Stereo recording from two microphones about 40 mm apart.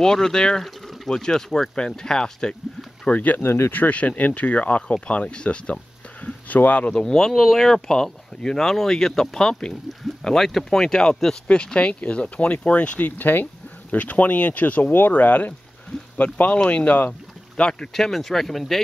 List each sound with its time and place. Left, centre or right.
0.0 s speech: centre
3.1 s speech: left
3.4 s speech: left
3.9 s speech: left
6.2 s speech: left
7.0 s speech: centre; by 13.1 s left
13.2 s speech: left
13.9 s speech: left
16.3 s speech: left
17.6 s speech: left
17.9 s speech: centre